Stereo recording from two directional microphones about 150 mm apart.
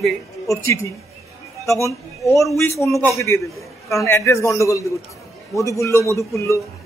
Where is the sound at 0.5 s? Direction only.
20° left (ahead or behind).